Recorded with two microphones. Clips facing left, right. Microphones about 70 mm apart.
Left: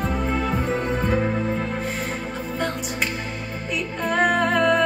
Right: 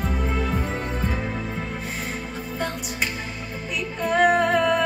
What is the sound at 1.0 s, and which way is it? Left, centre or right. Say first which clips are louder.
Music: left 6 dB; left.